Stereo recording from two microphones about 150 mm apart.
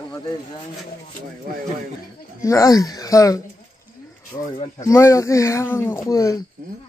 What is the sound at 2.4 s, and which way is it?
Speech, 20° left (ahead or behind).